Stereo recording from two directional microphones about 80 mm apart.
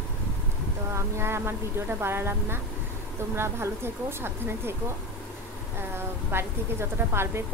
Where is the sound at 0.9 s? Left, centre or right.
Right.